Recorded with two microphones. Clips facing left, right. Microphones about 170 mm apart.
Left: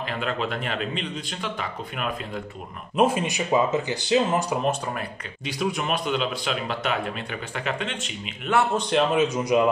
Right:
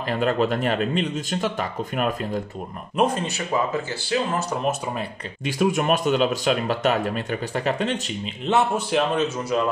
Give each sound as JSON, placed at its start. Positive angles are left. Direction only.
{"t": 0.2, "sound": "speech", "side_deg": -40}
{"t": 3.0, "sound": "speech", "side_deg": 10}
{"t": 5.4, "sound": "speech", "side_deg": -50}
{"t": 8.5, "sound": "a man's voice", "side_deg": -25}
{"t": 9.1, "sound": "speech", "side_deg": 10}